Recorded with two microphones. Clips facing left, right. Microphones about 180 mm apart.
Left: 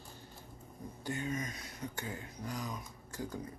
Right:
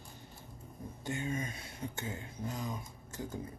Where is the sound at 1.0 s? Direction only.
25° right (ahead or behind).